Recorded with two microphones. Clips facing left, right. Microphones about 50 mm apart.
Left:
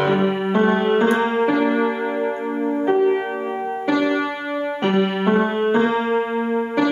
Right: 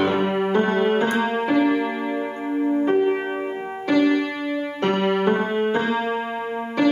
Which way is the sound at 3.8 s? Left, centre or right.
Left.